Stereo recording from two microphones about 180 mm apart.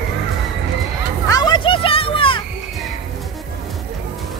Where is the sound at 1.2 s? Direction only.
20° left (ahead or behind).